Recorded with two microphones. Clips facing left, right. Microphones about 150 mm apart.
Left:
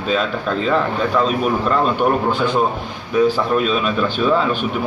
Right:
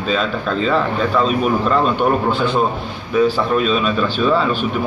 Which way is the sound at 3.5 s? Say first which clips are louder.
Right 1 dB; 5° left (ahead or behind).